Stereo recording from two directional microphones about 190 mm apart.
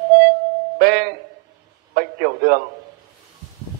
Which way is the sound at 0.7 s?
50° right (ahead or behind).